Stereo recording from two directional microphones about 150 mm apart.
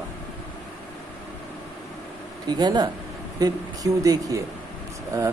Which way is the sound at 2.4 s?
30° right (ahead or behind).